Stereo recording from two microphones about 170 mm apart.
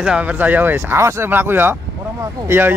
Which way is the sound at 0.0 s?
5° right (ahead or behind).